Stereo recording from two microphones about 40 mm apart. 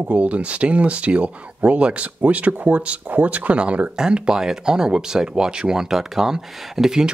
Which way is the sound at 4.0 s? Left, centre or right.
Right.